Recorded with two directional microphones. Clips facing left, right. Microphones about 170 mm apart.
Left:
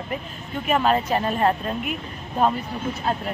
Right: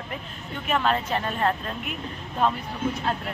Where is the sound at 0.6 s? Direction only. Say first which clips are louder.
Left 4 dB; 10° left (ahead or behind).